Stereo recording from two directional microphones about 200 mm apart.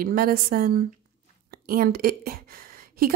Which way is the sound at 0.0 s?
45° right (ahead or behind).